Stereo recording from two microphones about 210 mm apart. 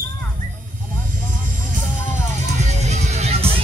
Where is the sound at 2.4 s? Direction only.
35° right (ahead or behind).